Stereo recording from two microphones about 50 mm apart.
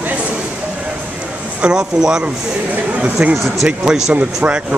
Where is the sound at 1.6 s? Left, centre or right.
Centre.